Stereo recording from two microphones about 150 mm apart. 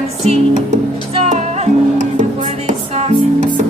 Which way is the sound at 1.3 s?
50° right (ahead or behind).